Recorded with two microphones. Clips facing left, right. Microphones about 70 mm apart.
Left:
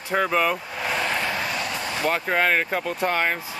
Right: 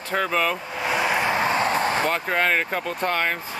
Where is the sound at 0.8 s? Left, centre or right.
Centre; by 2.0 s right.